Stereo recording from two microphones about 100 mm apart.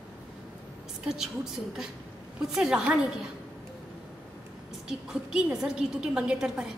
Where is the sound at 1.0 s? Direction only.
5° right (ahead or behind).